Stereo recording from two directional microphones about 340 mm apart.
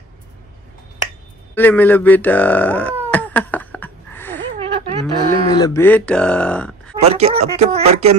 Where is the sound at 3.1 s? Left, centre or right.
Centre.